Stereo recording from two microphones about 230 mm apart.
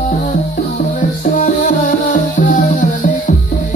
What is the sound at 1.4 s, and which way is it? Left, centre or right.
Music, left.